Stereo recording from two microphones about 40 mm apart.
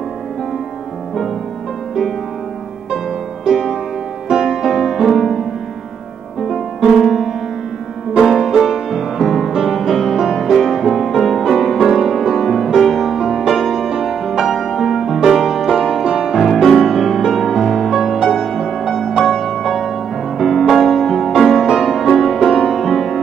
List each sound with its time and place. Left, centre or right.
3.4 s music: centre
6.4 s music: centre
15.8 s music: centre
16.6 s music: centre